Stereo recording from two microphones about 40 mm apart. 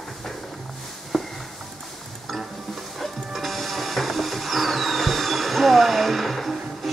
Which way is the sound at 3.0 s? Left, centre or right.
Centre.